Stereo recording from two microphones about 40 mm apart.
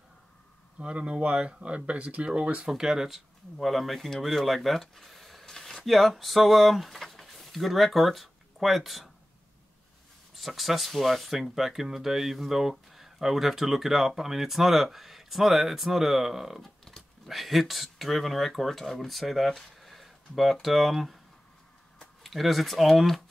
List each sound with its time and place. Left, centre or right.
0.7 s speech: right
2.7 s speech: centre
3.6 s speech: centre
5.5 s a sound: centre
5.9 s speech: centre
10.3 s speech: centre
19.8 s a sound: centre
20.6 s speech: centre
22.2 s speech: centre